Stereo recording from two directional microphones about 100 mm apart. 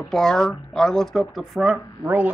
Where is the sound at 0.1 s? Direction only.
5° left (ahead or behind).